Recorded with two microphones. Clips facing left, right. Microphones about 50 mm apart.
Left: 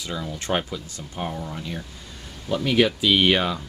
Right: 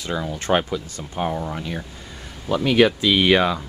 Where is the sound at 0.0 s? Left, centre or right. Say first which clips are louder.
Right 5 dB; right.